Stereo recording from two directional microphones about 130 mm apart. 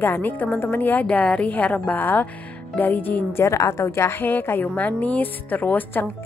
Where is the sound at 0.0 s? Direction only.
15° left (ahead or behind).